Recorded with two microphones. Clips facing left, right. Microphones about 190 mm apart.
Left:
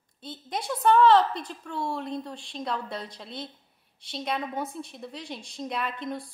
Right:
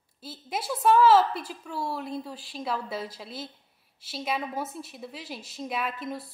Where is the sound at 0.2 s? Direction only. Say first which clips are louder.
Even; 5° right (ahead or behind).